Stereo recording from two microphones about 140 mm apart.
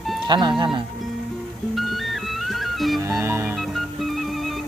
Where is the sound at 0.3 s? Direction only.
30° right (ahead or behind).